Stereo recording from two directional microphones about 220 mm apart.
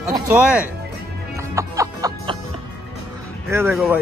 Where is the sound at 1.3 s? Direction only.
15° right (ahead or behind).